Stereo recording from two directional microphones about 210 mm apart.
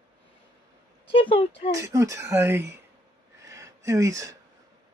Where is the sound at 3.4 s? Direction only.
15° right (ahead or behind).